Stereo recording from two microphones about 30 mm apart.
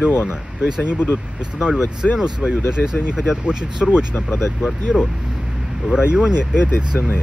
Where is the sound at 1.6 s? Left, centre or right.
Right.